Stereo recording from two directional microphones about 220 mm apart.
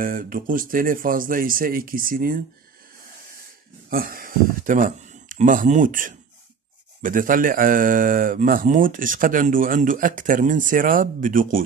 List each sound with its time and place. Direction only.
0.0 s speech: 40° right (ahead or behind)
3.9 s speech: 40° right (ahead or behind)